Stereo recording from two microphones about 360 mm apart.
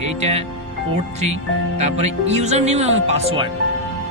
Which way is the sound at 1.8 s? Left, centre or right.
Centre.